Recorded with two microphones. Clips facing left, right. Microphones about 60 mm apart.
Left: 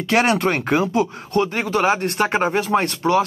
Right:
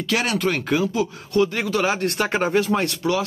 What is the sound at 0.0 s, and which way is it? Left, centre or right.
Speech, left.